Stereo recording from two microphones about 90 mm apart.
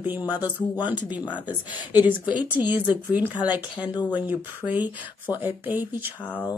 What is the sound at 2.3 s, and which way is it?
A woman's voice, 15° right (ahead or behind).